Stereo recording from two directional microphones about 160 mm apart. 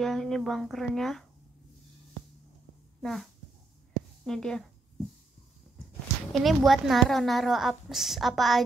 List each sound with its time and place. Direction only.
0.0 s a woman's voice: centre (ahead or behind)
3.0 s speech: centre (ahead or behind)
4.3 s a woman's voice: 5° left (ahead or behind)
6.3 s a woman's voice: centre (ahead or behind)